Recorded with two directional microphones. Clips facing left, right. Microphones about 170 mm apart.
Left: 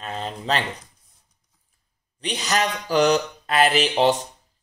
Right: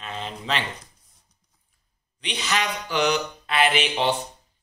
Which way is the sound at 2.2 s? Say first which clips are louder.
Left 3 dB; 40° left (ahead or behind).